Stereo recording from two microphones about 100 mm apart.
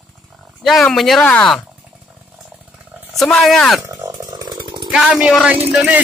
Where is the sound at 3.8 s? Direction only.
30° right (ahead or behind).